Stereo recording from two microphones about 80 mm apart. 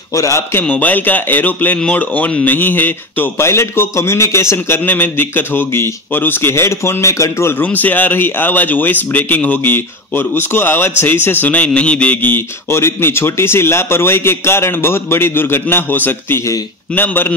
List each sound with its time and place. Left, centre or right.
0.1 s a man's voice: left
0.6 s speech: left
3.3 s speech: left
4.8 s speech: left
7.6 s speech: left